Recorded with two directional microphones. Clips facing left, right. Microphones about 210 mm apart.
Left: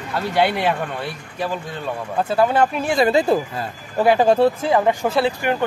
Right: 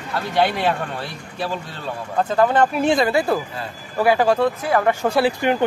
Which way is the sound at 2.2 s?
10° left (ahead or behind).